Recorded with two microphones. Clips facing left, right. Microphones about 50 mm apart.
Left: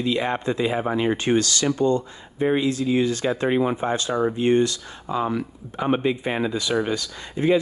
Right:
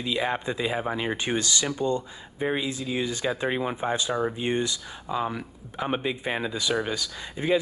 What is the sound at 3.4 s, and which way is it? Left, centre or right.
Speech, left.